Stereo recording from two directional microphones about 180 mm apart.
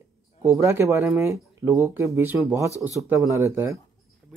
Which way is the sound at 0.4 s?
15° right (ahead or behind).